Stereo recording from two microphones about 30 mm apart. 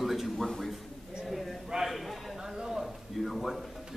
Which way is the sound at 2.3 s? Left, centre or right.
Centre.